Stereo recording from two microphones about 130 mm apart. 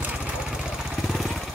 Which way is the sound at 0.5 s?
Centre (ahead or behind).